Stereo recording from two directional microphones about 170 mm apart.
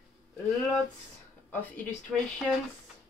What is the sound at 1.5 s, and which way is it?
A woman's voice, 10° left (ahead or behind).